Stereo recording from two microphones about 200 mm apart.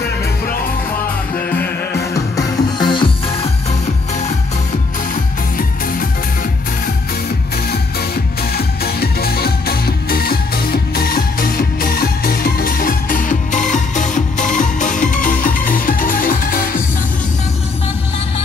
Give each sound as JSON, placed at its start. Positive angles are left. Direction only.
{"t": 2.1, "sound": "music", "side_deg": 20}
{"t": 8.5, "sound": "music", "side_deg": 50}